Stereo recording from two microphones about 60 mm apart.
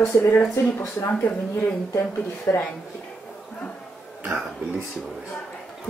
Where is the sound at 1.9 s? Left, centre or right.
Left.